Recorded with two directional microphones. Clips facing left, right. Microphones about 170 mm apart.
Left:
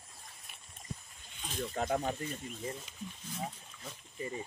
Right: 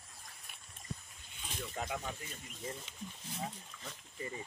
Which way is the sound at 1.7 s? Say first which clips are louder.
Left 8 dB; 45° left (ahead or behind).